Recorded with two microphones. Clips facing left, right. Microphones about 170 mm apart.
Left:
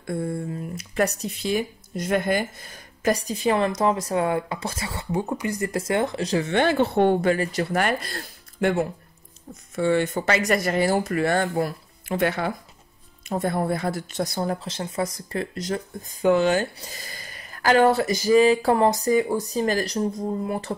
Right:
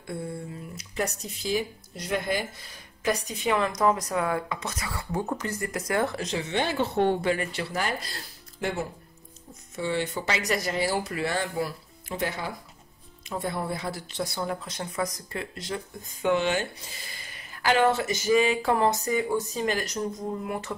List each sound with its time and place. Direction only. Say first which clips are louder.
0.0 s speech: left 7 dB; 55° left (ahead or behind); by 5.0 s 30° left (ahead or behind)
5.2 s speech: left 3 dB; 10° left (ahead or behind)
5.6 s speech: left 3 dB; 25° left (ahead or behind)
6.2 s speech: left 7 dB; 50° left (ahead or behind)
7.7 s speech: left 6 dB; 60° left (ahead or behind)
13.3 s speech: left 6 dB; 50° left (ahead or behind); by 20.7 s 35° left (ahead or behind)